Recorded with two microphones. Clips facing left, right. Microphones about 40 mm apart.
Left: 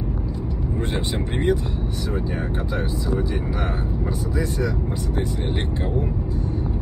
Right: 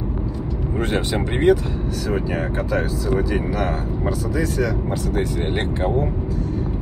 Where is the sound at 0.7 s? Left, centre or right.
Right.